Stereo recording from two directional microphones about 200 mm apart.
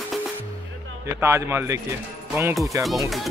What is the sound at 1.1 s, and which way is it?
Speech, 10° right (ahead or behind).